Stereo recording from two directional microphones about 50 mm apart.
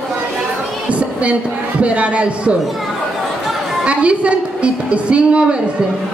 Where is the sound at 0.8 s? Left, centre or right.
Right.